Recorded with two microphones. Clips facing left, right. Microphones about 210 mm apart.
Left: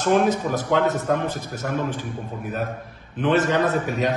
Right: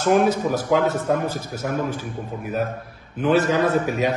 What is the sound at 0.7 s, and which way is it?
Speech, 5° right (ahead or behind).